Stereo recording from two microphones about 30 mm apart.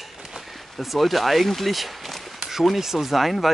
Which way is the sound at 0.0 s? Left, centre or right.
Centre.